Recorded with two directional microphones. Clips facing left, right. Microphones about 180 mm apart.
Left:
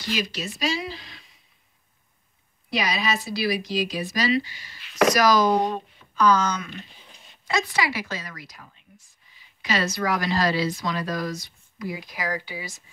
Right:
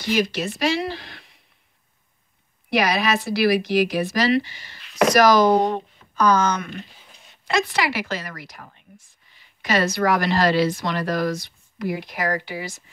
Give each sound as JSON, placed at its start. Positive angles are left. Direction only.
{"t": 0.0, "sound": "a woman's voice", "side_deg": -55}
{"t": 2.7, "sound": "a woman's voice", "side_deg": -65}
{"t": 6.1, "sound": "speech", "side_deg": -45}
{"t": 7.4, "sound": "speech", "side_deg": -70}